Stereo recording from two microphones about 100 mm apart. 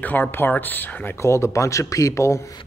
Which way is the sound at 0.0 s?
15° left (ahead or behind).